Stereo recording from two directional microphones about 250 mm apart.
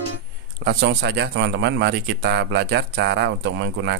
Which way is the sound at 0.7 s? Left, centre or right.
Right.